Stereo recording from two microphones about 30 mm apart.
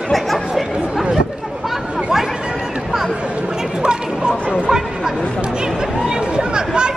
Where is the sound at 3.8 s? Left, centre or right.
Right.